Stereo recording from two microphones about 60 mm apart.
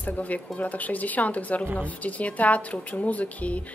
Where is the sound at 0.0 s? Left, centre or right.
Left.